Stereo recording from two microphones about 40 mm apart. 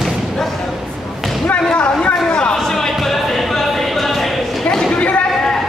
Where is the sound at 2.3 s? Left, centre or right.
Left.